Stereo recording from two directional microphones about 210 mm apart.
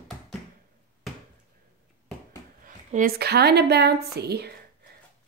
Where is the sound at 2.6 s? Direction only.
40° right (ahead or behind).